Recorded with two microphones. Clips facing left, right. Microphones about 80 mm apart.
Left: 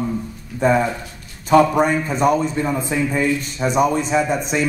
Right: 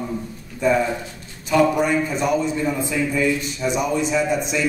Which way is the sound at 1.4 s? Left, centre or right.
Left.